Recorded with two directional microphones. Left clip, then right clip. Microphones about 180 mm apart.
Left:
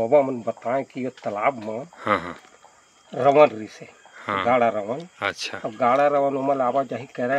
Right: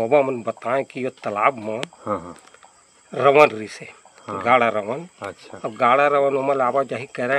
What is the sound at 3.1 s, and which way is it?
Speech, 30° right (ahead or behind).